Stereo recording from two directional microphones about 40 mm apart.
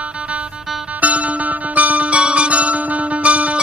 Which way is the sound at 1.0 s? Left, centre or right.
Right.